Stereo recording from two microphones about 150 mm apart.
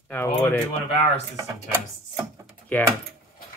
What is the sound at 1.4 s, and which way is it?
Speech, 20° right (ahead or behind).